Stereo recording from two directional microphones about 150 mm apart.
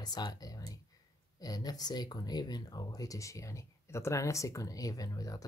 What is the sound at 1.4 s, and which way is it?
Speech, 25° left (ahead or behind).